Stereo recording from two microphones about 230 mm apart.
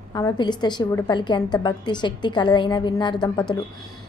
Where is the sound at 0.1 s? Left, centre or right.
Centre.